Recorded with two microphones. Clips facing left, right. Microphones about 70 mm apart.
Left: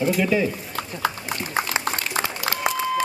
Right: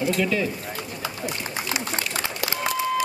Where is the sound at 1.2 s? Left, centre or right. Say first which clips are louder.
Left 3 dB; left.